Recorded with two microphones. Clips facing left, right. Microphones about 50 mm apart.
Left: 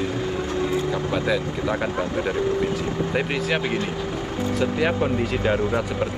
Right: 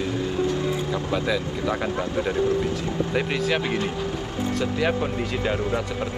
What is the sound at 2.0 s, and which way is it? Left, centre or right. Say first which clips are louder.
Speech: even; left.